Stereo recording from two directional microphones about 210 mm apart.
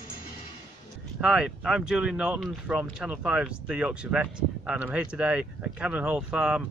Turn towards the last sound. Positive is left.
turn(degrees=-5)  # may be behind; listen again after turning